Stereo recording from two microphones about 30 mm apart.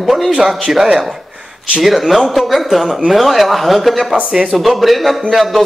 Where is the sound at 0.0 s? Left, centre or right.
Centre.